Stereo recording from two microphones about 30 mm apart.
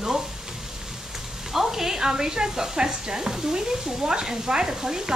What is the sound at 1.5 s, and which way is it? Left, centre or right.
Speech, centre.